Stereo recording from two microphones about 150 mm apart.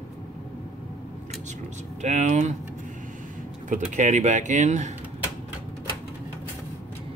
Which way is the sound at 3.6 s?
55° right (ahead or behind).